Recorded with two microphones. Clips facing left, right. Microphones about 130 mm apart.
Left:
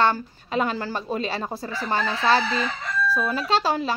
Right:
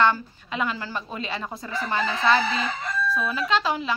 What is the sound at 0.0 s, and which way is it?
Speech, 35° left (ahead or behind).